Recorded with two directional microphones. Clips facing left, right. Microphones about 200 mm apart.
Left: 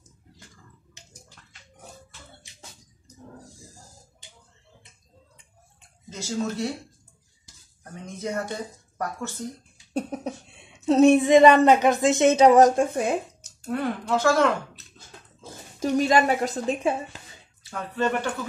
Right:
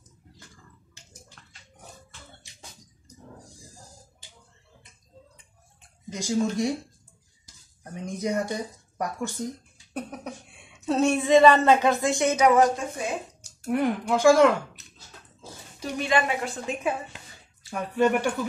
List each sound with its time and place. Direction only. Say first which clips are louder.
6.0 s a woman's voice: right 3 dB; 15° right (ahead or behind)
7.8 s speech: right 3 dB; 15° right (ahead or behind)
9.9 s speech: left 5 dB; 25° left (ahead or behind); by 13.2 s 55° left (ahead or behind)
13.7 s a woman's voice: right 2 dB; 15° right (ahead or behind)
15.8 s a woman's voice: left 5 dB; 40° left (ahead or behind)
17.6 s a woman's voice: right 3 dB; 15° right (ahead or behind)